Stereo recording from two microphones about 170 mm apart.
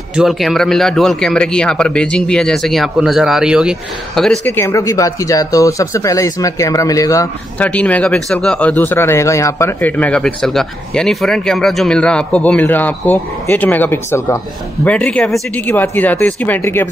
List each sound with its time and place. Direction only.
0.1 s a man's voice: centre (ahead or behind)
4.5 s speech: 15° left (ahead or behind)
7.5 s speech: 10° left (ahead or behind)